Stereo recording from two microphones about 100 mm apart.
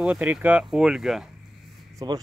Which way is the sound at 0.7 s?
5° right (ahead or behind).